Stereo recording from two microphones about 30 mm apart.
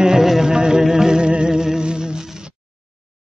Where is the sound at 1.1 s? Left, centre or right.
Right.